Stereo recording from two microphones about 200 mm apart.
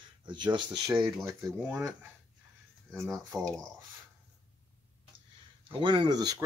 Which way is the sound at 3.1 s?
5° left (ahead or behind).